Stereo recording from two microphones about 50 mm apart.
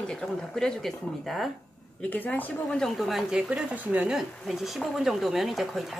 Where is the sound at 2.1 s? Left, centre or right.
Left.